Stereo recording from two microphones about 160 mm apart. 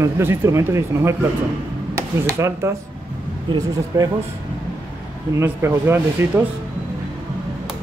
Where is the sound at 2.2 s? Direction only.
20° right (ahead or behind).